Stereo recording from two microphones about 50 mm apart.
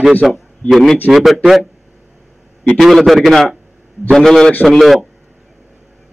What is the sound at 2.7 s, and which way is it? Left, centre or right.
A man's voice, centre.